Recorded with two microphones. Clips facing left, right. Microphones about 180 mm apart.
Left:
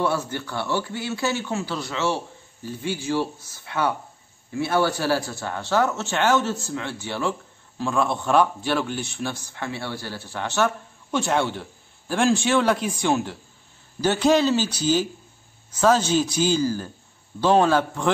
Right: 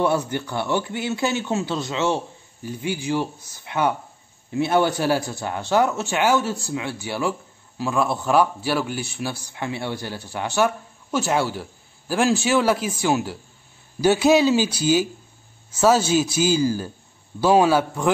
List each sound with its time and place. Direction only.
0.0 s a man's voice: 15° right (ahead or behind)